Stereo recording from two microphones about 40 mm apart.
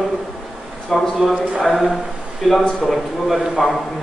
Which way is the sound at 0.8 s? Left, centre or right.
Centre.